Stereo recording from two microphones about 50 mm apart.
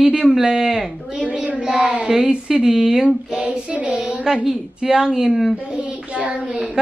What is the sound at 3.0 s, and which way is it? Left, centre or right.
Speech, right.